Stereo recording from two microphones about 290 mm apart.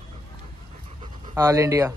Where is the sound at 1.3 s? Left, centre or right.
Centre.